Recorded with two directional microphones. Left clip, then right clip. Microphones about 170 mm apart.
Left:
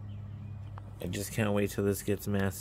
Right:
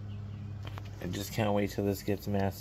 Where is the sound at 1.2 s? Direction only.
40° left (ahead or behind).